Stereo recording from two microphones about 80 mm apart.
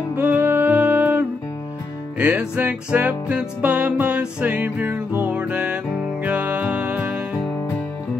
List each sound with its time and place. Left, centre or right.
0.1 s music: centre